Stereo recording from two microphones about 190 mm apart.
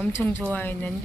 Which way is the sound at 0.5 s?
10° left (ahead or behind).